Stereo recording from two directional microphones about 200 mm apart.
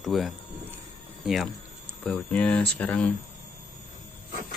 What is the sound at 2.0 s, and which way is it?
Speech, 5° left (ahead or behind).